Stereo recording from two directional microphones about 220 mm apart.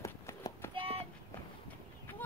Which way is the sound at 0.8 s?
25° right (ahead or behind).